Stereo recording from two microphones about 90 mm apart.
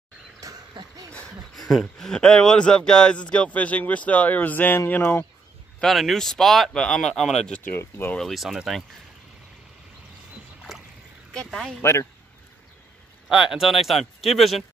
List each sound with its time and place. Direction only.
0.4 s a sound: 40° right (ahead or behind)
1.7 s speech: 5° left (ahead or behind); by 5.2 s 25° left (ahead or behind)
5.8 s speech: centre (ahead or behind)
7.7 s speech: 25° left (ahead or behind)
8.2 s speech: centre (ahead or behind)
11.3 s speech: 5° left (ahead or behind)
11.8 s a man's voice: 30° left (ahead or behind)
13.3 s speech: 5° right (ahead or behind)